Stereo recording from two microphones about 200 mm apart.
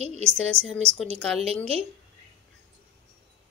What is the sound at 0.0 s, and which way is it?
Speech, 30° right (ahead or behind).